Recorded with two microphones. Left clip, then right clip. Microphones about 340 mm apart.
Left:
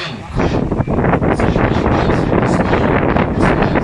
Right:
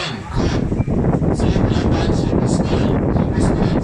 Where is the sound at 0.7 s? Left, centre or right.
Left.